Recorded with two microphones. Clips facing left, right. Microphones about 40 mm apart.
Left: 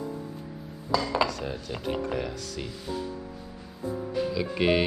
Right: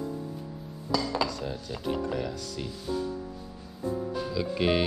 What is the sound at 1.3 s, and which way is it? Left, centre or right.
Dishes, left.